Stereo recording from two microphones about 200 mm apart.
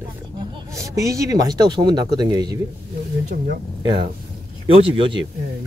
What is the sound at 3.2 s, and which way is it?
Speech, 45° right (ahead or behind).